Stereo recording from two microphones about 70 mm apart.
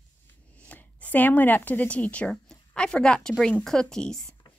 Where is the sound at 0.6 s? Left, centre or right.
Left.